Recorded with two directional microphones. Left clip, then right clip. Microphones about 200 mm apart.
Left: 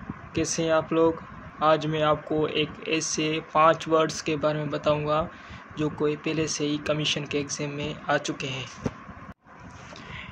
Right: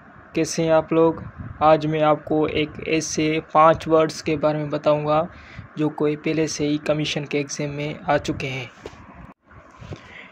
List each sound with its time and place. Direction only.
0.3 s speech: 30° right (ahead or behind)